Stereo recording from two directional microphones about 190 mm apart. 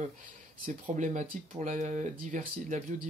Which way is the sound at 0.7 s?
40° right (ahead or behind).